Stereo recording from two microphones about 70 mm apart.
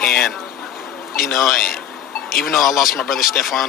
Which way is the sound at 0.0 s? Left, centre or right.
Centre.